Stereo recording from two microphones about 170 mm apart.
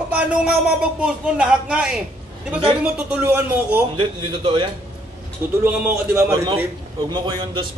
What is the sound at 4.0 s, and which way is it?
Speech, 30° right (ahead or behind).